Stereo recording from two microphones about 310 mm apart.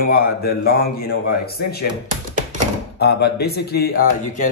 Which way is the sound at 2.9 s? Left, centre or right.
Left.